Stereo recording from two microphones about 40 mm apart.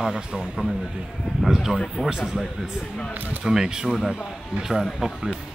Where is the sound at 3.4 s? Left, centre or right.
Centre.